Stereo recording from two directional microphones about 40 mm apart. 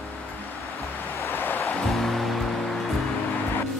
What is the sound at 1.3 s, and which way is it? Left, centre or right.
Vehicle, left.